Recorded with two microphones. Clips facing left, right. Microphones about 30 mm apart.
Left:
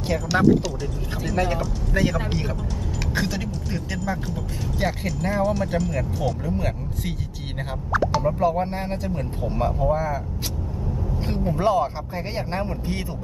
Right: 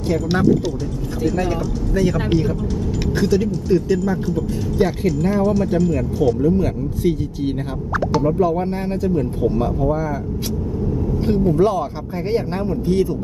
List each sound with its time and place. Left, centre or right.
1.3 s speech: left
3.2 s speech: centre
11.2 s speech: centre
11.5 s speech: left
11.8 s speech: centre